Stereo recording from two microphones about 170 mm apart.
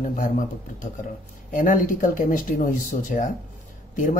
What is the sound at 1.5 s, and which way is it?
Speech, 50° left (ahead or behind).